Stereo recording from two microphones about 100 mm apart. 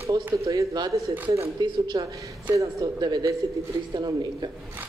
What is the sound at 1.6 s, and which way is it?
A woman's voice, 45° right (ahead or behind).